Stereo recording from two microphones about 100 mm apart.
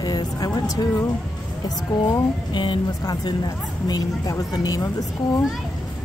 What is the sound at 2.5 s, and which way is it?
A woman's voice, 50° left (ahead or behind).